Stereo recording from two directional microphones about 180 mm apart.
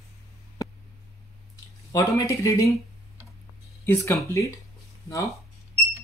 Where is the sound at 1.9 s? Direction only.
20° left (ahead or behind).